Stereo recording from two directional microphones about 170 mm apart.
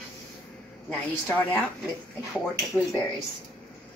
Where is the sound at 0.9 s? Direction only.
10° left (ahead or behind).